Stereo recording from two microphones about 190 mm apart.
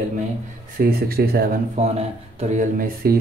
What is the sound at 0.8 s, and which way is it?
Speech, 55° right (ahead or behind).